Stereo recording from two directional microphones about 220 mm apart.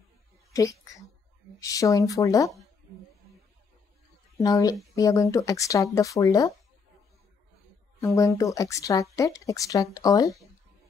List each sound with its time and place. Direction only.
0.5 s speech: 15° left (ahead or behind)
4.4 s speech: 15° left (ahead or behind)
8.0 s speech: 15° left (ahead or behind)